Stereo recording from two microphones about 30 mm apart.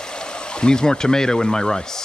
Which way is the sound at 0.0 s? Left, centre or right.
Left.